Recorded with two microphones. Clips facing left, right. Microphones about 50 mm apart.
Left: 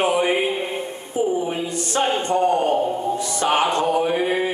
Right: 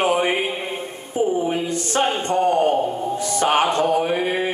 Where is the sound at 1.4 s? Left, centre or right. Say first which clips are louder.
Right 2 dB; right.